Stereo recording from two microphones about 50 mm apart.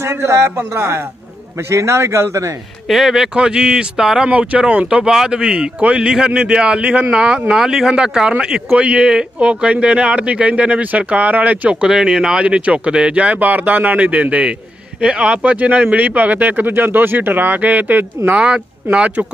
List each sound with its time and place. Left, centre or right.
0.0 s a man's voice: right
2.9 s speech: centre
3.3 s speech: centre
4.3 s speech: right
7.5 s speech: centre; by 11.9 s right
11.9 s speech: centre
12.4 s speech: right
13.9 s speech: right
18.4 s speech: right